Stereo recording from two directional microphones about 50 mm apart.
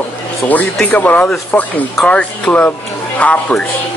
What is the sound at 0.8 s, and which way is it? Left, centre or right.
A man's voice, left.